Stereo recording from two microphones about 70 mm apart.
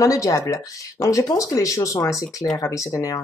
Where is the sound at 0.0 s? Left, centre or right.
Left.